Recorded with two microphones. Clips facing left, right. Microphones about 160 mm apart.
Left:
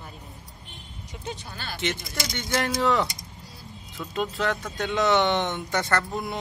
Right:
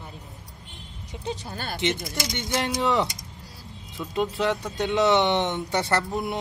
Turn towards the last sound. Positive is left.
turn(degrees=-20)  # may be behind; listen again after turning